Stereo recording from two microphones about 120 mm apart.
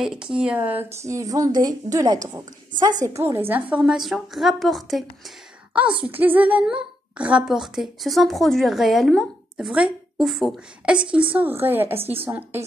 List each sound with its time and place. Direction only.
0.0 s a woman's voice: 5° right (ahead or behind)
0.9 s a woman's voice: 25° right (ahead or behind); by 5.0 s centre (ahead or behind)
5.7 s a woman's voice: 10° right (ahead or behind)
9.7 s a woman's voice: 10° right (ahead or behind)
11.1 s a woman's voice: 10° right (ahead or behind)